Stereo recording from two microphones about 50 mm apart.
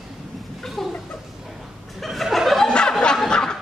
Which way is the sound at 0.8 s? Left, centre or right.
Centre.